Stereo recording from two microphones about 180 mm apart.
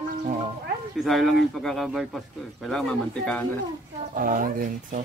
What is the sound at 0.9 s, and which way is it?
Speech, centre (ahead or behind).